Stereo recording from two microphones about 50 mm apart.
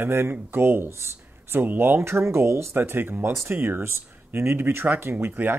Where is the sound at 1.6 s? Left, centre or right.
Right.